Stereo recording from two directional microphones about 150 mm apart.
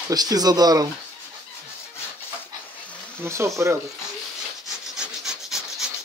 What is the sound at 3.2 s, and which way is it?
Speech, 15° right (ahead or behind).